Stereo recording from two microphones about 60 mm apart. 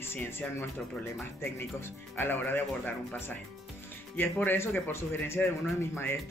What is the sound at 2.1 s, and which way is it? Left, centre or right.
A man's voice, left.